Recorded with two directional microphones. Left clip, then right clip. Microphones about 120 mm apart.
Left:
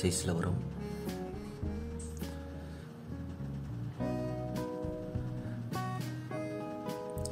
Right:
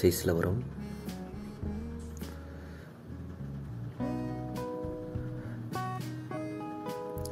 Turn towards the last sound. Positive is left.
turn(degrees=0)  # may be behind; listen again after turning